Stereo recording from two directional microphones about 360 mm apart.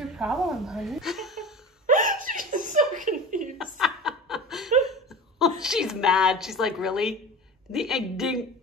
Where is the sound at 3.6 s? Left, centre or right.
Centre.